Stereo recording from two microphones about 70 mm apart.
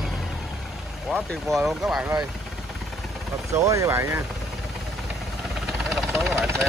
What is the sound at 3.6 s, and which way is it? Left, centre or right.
Speech, right.